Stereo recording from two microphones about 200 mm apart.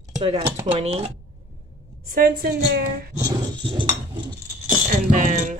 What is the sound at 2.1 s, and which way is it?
Speech, 45° right (ahead or behind).